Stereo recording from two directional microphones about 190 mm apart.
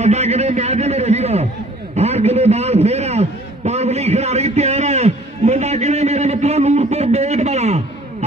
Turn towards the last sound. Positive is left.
turn(degrees=-35)  # may be behind; listen again after turning